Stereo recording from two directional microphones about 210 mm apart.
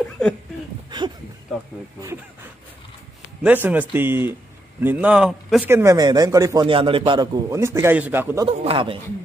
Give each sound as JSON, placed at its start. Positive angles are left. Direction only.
{"t": 0.2, "sound": "speech", "side_deg": 5}
{"t": 0.8, "sound": "speech", "side_deg": -20}
{"t": 3.4, "sound": "a man's voice", "side_deg": -10}
{"t": 8.5, "sound": "speech", "side_deg": -25}